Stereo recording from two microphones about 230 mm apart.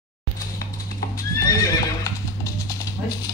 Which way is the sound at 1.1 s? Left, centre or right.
Centre.